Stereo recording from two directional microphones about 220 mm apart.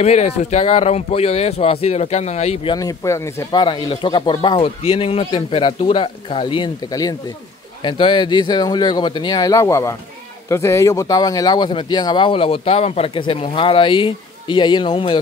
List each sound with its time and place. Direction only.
0.0 s speech: 30° left (ahead or behind)